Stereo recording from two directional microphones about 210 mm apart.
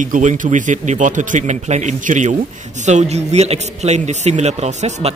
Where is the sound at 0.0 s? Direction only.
35° right (ahead or behind).